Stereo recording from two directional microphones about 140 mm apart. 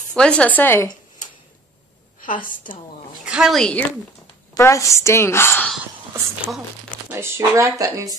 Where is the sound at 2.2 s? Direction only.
75° left (ahead or behind).